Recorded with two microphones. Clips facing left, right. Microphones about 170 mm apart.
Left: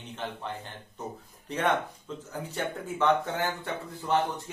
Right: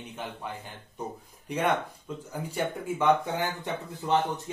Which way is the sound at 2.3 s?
10° right (ahead or behind).